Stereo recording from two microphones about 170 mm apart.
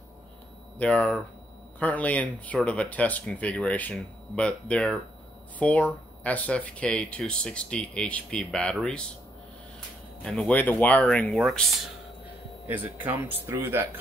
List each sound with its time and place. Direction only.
0.7 s speech: 5° left (ahead or behind)
10.2 s speech: 5° left (ahead or behind)
12.6 s speech: 10° right (ahead or behind)